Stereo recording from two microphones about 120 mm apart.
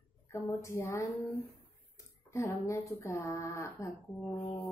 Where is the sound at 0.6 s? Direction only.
25° left (ahead or behind).